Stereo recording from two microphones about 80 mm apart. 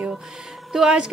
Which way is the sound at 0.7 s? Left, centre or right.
Centre.